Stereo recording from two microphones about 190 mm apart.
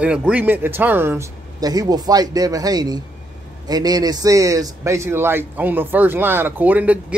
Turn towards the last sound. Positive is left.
turn(degrees=-10)  # may be behind; listen again after turning